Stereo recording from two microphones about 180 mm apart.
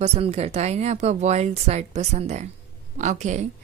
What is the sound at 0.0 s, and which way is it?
A woman's voice, 35° right (ahead or behind).